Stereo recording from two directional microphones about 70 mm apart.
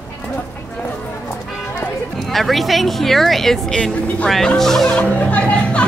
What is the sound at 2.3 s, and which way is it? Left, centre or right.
A woman's voice, centre.